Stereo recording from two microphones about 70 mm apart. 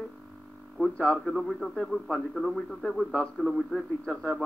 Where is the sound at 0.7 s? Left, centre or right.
Centre.